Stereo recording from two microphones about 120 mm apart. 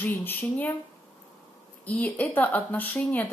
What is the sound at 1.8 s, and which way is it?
A woman's voice, 10° left (ahead or behind).